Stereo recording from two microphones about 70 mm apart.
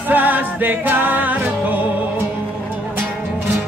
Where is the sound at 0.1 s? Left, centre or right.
Right.